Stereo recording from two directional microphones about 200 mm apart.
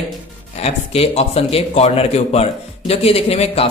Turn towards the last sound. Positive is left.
turn(degrees=30)  # may be behind; listen again after turning